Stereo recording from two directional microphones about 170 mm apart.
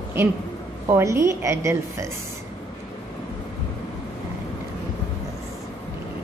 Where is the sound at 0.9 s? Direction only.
15° right (ahead or behind).